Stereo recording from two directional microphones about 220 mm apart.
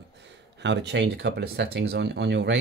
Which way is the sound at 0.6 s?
50° right (ahead or behind).